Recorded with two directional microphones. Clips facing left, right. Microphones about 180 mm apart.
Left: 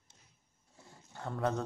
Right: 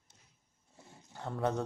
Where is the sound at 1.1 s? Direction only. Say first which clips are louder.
Even; 15° right (ahead or behind).